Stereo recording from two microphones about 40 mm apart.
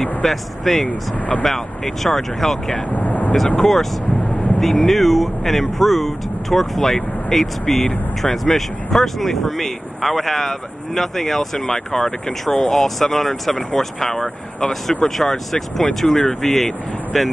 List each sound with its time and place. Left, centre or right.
0.0 s speech: centre
0.8 s speech: left
1.4 s speech: centre
2.9 s vehicle: left
3.5 s speech: centre